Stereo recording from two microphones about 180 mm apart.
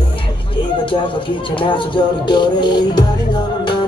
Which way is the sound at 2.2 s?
25° left (ahead or behind).